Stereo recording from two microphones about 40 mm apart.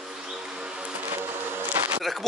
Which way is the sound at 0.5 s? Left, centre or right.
Right.